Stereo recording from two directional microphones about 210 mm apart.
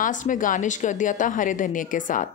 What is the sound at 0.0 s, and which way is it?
A woman's voice, 40° left (ahead or behind).